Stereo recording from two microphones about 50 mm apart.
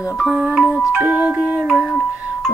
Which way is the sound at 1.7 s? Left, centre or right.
Centre.